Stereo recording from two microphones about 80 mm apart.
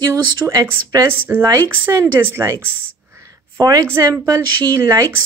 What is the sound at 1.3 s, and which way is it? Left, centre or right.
Speech, right.